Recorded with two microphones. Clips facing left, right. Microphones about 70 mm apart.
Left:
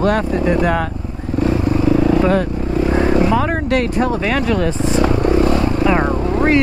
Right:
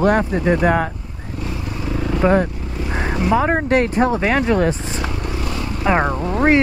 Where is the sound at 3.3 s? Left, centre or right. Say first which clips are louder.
Even; right.